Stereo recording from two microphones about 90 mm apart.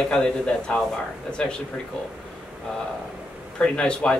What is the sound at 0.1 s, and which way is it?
Speech, 10° left (ahead or behind).